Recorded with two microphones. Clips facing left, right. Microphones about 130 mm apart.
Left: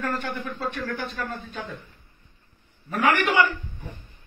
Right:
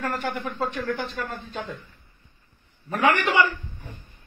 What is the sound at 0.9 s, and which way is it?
Speech, 25° right (ahead or behind).